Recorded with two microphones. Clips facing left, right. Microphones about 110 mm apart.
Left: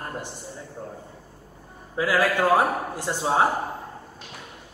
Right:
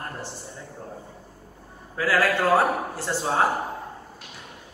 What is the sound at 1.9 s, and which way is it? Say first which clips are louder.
A man's voice: even; 15° left (ahead or behind).